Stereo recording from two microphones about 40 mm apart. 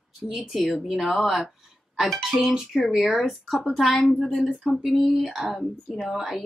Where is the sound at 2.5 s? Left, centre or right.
Centre.